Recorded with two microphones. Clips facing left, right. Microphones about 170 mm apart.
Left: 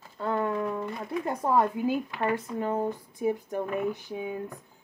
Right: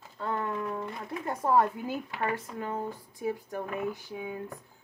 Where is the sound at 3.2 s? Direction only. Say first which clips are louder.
Left 5 dB; 20° left (ahead or behind).